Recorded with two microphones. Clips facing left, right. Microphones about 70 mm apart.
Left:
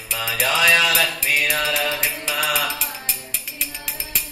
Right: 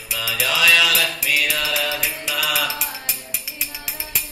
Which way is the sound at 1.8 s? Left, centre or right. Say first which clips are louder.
Left 1 dB; centre.